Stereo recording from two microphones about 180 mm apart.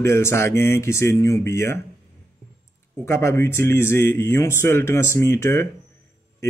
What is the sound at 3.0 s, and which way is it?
A man's voice, 15° left (ahead or behind).